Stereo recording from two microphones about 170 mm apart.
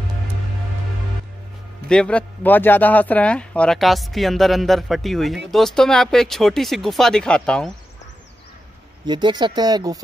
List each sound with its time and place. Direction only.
1.9 s speech: 5° left (ahead or behind)
9.0 s speech: 25° right (ahead or behind)